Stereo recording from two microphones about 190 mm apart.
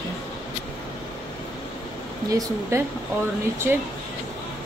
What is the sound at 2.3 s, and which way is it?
Speech, 20° right (ahead or behind).